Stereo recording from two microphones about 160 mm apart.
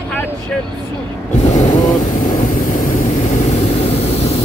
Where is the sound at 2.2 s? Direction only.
55° left (ahead or behind).